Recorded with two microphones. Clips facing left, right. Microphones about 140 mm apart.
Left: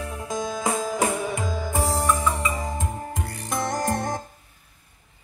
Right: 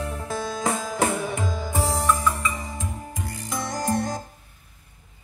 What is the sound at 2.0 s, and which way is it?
Music, 15° left (ahead or behind).